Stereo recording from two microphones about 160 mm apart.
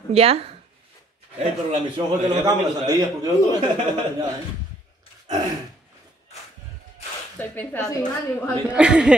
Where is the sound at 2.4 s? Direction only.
25° right (ahead or behind).